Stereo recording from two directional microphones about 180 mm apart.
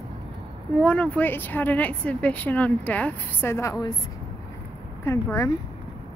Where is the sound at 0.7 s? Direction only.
5° left (ahead or behind).